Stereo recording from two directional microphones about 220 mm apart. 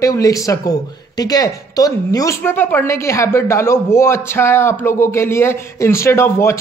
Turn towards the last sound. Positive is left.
turn(degrees=10)  # may be behind; listen again after turning